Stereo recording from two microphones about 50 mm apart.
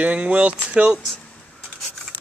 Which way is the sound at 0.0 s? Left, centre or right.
Right.